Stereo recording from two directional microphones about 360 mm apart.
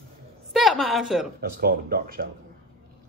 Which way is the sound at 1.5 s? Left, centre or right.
Right.